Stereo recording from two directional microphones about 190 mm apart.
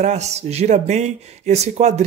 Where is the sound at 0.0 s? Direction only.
35° right (ahead or behind).